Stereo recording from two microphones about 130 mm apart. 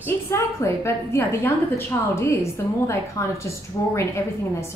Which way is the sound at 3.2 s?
25° left (ahead or behind).